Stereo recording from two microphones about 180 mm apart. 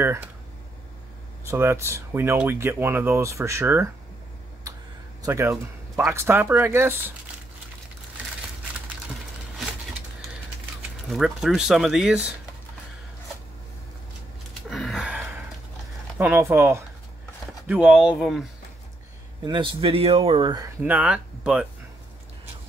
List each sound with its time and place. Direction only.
0.0 s speech: 10° right (ahead or behind)
1.4 s speech: 15° right (ahead or behind)
5.2 s speech: 15° right (ahead or behind)
11.1 s speech: centre (ahead or behind)
14.7 s a sound: centre (ahead or behind)
16.2 s speech: 10° right (ahead or behind)
19.4 s speech: 25° right (ahead or behind)
20.8 s speech: 10° right (ahead or behind)